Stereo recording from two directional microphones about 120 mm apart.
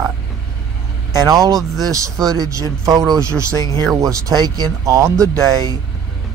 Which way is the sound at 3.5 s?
30° left (ahead or behind).